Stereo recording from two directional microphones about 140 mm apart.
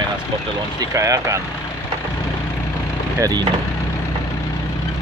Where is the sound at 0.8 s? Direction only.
25° right (ahead or behind).